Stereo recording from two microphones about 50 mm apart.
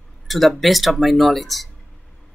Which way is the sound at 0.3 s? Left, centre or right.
Centre.